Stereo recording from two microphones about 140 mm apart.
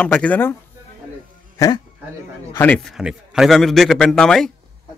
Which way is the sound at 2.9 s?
5° right (ahead or behind).